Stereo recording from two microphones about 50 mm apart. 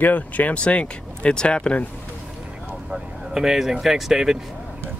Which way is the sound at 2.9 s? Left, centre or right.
Centre.